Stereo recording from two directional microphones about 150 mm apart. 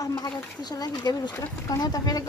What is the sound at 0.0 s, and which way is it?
Speech, 25° left (ahead or behind).